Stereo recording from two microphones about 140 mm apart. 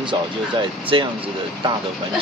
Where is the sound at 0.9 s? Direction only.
35° right (ahead or behind).